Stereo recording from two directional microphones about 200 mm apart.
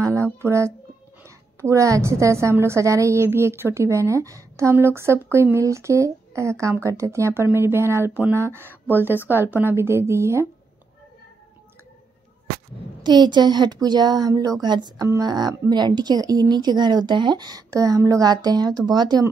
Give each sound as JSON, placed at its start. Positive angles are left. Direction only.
{"t": 0.0, "sound": "music", "side_deg": -15}
{"t": 1.2, "sound": "a woman's voice", "side_deg": -15}
{"t": 13.0, "sound": "speech", "side_deg": -20}